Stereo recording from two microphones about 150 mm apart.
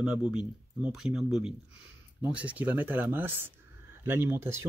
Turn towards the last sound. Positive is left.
turn(degrees=-15)  # may be behind; listen again after turning